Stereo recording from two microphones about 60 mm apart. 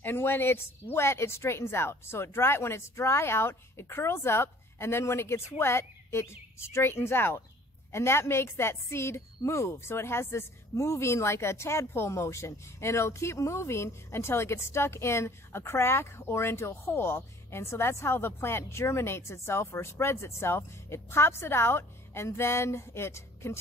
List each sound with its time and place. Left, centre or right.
0.0 s a woman's voice: left